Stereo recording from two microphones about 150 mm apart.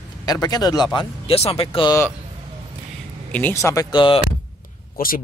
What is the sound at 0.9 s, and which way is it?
Speech, 40° left (ahead or behind).